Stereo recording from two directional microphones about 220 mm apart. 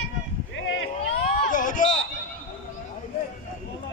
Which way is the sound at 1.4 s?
35° left (ahead or behind).